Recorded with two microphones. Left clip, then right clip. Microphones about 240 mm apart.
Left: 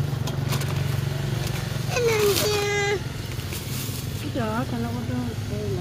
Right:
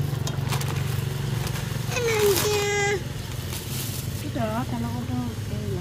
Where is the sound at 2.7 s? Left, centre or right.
Right.